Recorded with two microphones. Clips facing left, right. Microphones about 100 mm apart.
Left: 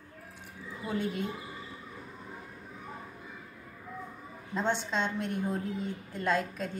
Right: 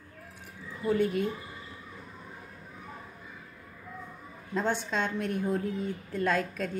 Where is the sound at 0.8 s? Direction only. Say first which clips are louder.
Right 7 dB; 25° left (ahead or behind).